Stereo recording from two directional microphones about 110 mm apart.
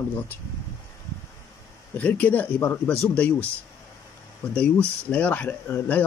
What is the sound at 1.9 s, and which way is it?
Speech, 15° left (ahead or behind).